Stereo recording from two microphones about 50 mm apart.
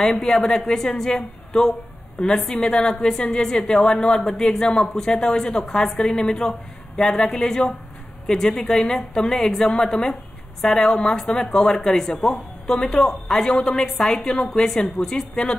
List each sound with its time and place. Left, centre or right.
0.3 s a woman's voice: centre